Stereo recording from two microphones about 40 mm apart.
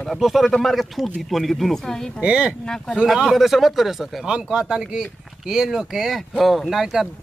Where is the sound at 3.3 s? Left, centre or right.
Centre.